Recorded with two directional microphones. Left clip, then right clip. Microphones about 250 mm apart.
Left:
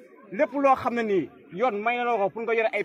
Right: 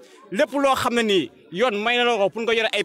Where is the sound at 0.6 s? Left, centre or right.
Right.